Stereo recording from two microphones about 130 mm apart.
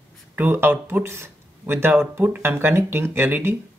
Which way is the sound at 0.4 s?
15° right (ahead or behind).